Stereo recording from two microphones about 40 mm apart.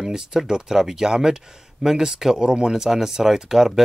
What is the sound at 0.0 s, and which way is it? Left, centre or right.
Speech, centre.